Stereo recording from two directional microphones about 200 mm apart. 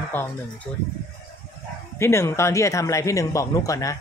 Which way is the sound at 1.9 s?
15° left (ahead or behind).